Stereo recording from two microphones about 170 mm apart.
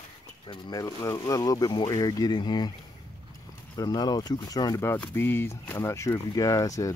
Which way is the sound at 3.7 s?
25° left (ahead or behind).